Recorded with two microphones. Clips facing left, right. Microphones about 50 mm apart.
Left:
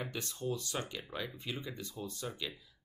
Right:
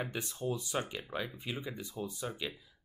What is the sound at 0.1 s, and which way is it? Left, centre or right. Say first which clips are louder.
Speech: right 2 dB; centre.